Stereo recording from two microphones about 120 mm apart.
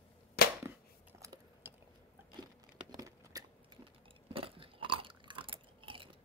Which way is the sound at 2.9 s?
30° right (ahead or behind).